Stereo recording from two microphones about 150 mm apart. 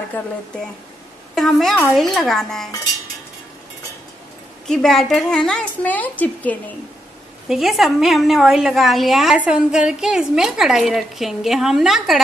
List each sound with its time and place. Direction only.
1.3 s a woman's voice: centre (ahead or behind)
4.6 s a woman's voice: 5° left (ahead or behind)
7.4 s a woman's voice: centre (ahead or behind)